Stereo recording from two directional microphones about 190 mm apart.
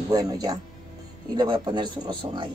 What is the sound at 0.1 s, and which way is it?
Speech, 20° right (ahead or behind).